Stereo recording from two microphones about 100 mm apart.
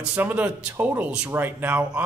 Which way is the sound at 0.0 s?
15° right (ahead or behind).